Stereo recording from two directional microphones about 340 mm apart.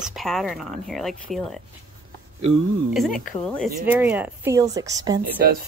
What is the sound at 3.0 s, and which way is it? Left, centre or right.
Speech, centre.